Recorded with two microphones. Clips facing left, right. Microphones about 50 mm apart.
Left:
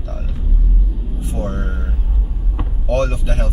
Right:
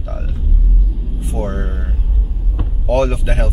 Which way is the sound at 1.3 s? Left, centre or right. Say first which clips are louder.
Right 2 dB; right.